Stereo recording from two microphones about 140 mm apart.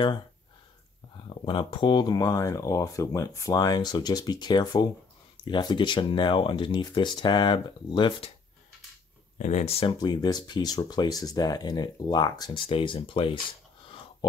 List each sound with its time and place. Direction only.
1.2 s speech: 35° left (ahead or behind)
9.4 s speech: 55° left (ahead or behind); by 13.4 s 40° left (ahead or behind)